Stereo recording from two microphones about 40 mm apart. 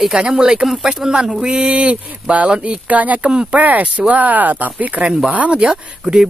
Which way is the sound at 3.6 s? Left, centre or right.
Right.